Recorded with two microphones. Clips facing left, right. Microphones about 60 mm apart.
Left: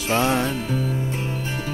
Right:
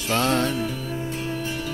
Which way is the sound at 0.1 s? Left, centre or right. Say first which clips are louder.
Left 1 dB; centre.